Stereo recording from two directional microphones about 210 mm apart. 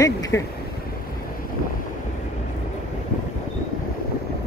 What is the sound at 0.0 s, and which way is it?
Speech, 15° left (ahead or behind).